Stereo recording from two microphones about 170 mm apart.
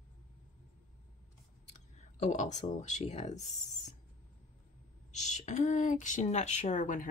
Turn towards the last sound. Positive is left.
turn(degrees=50)  # may be behind; listen again after turning